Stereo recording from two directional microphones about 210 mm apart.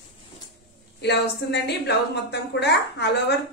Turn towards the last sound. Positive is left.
turn(degrees=55)  # may be behind; listen again after turning